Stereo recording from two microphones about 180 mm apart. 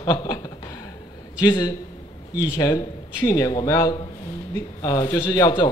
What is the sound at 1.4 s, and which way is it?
A man's voice, 25° left (ahead or behind).